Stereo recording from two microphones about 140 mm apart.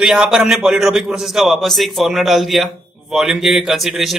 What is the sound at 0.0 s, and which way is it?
A man's voice, 5° right (ahead or behind).